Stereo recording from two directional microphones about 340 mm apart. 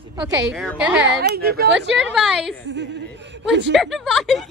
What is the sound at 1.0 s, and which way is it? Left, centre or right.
Speech, right.